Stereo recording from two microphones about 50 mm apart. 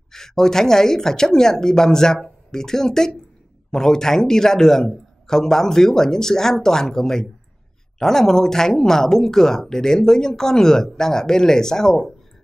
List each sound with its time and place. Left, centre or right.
0.1 s speech: centre